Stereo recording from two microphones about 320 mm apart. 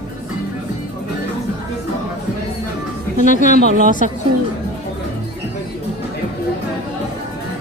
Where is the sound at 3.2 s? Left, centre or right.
Left.